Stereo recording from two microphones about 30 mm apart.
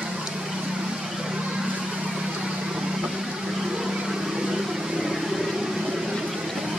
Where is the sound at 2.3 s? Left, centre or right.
Right.